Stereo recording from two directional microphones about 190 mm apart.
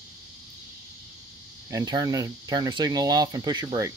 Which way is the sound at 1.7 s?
20° right (ahead or behind).